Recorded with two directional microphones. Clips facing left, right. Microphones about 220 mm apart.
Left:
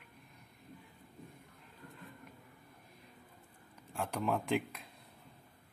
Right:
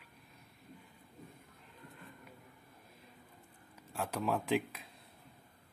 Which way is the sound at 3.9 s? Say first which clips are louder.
Even; 5° right (ahead or behind).